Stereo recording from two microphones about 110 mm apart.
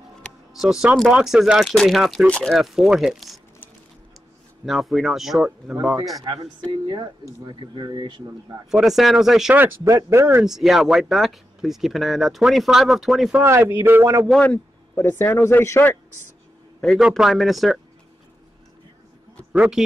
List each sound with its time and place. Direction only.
0.5 s speech: 5° right (ahead or behind)
4.6 s speech: centre (ahead or behind)
6.7 s speech: 50° right (ahead or behind)
8.6 s speech: 5° right (ahead or behind)
9.8 s speech: 25° right (ahead or behind)
10.4 s speech: 5° right (ahead or behind)
13.4 s speech: 20° right (ahead or behind)
15.0 s speech: 20° left (ahead or behind)
16.8 s speech: centre (ahead or behind)
19.5 s speech: 10° right (ahead or behind)